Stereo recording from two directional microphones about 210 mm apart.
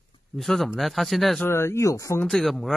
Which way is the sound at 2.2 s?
Centre (ahead or behind).